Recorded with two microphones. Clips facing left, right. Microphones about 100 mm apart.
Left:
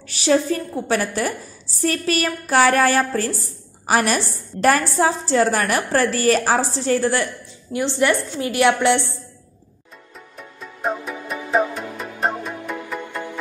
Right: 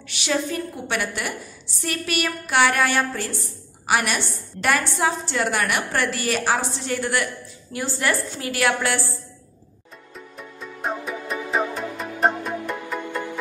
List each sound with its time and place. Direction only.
0.1 s a woman's voice: 35° left (ahead or behind)
10.6 s music: centre (ahead or behind)